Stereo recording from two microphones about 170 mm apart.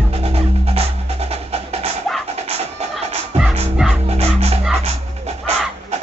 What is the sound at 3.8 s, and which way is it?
Music, centre (ahead or behind).